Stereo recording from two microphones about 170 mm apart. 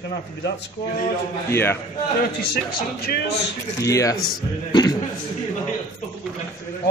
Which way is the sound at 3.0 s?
70° left (ahead or behind).